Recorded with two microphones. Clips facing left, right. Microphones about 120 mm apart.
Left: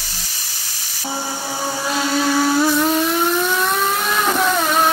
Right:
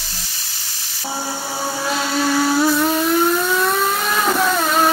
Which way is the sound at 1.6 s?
Centre (ahead or behind).